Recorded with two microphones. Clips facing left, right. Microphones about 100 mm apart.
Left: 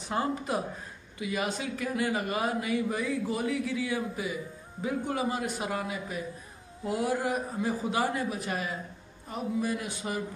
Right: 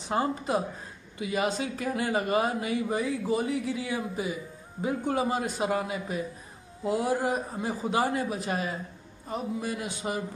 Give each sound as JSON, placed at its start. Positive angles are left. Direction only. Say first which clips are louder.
{"t": 0.1, "sound": "speech", "louder": "right 3 dB", "side_deg": -25}